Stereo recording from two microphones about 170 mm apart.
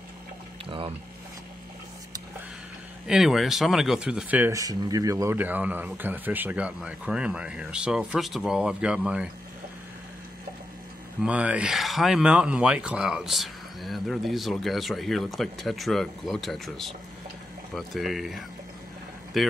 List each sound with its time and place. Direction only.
0.7 s a sound: 30° right (ahead or behind)
3.1 s speech: 5° right (ahead or behind)
11.2 s speech: 5° right (ahead or behind)